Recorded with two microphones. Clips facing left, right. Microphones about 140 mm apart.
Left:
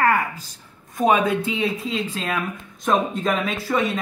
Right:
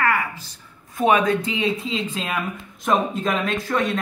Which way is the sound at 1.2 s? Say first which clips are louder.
Even; 5° left (ahead or behind).